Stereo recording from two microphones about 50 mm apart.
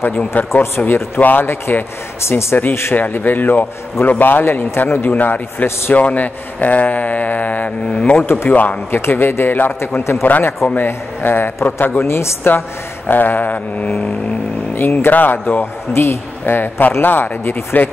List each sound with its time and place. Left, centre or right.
0.0 s speech: left
0.5 s a man's voice: left
2.7 s a man's voice: left
3.0 s a man's voice: left
5.1 s speech: left
8.9 s a man's voice: left
10.2 s speech: left
12.0 s a man's voice: left
13.1 s speech: left
14.8 s speech: left
15.9 s a man's voice: left